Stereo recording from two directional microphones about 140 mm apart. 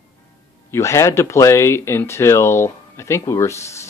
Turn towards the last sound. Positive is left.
turn(degrees=20)  # may be behind; listen again after turning